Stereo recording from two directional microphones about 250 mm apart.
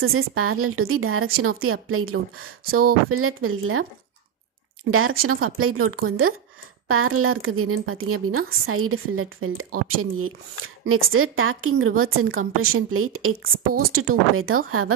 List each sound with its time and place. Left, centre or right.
0.0 s a woman's voice: right
5.2 s a woman's voice: right